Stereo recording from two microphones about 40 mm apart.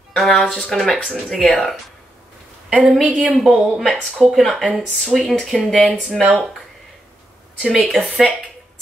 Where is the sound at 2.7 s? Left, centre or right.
Right.